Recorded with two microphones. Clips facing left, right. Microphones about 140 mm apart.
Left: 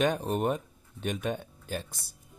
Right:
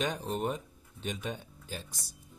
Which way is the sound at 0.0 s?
55° left (ahead or behind).